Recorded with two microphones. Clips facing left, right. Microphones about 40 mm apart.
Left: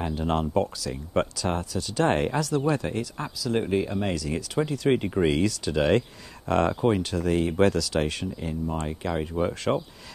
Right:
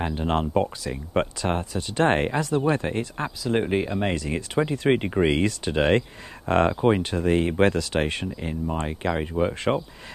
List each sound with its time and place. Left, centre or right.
0.0 s speech: right